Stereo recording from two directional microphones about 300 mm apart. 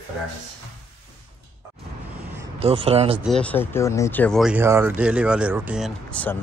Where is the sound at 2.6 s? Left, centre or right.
Centre.